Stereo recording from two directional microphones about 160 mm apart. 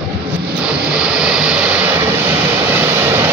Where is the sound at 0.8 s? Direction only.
5° right (ahead or behind).